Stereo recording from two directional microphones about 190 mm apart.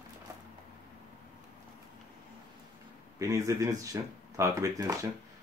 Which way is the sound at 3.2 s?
15° right (ahead or behind).